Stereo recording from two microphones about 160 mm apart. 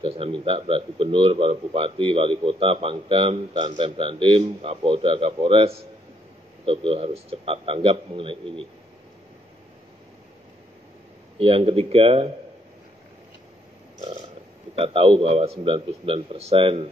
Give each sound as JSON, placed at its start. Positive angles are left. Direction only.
{"t": 0.0, "sound": "speech", "side_deg": -35}
{"t": 11.3, "sound": "speech", "side_deg": -35}
{"t": 14.8, "sound": "speech", "side_deg": -35}